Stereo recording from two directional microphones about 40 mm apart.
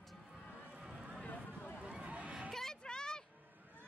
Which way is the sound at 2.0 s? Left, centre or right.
Right.